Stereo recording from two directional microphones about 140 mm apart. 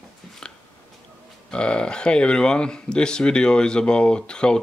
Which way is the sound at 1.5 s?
5° left (ahead or behind).